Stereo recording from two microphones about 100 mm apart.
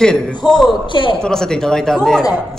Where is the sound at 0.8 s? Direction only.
55° left (ahead or behind).